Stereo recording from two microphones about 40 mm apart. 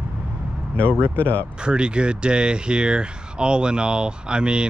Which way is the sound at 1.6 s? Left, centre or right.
Right.